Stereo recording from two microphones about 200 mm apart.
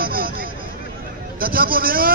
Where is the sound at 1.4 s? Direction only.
45° right (ahead or behind).